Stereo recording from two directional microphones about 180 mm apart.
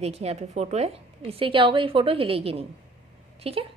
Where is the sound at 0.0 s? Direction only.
35° right (ahead or behind).